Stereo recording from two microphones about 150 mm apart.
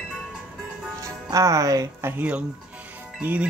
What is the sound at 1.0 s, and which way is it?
Speech, 20° right (ahead or behind).